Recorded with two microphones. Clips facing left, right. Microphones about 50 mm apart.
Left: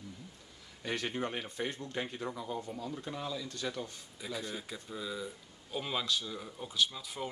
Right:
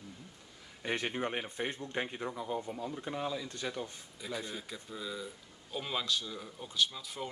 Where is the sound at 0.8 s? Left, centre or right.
Right.